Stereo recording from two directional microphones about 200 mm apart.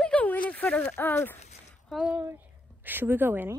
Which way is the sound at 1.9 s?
5° right (ahead or behind).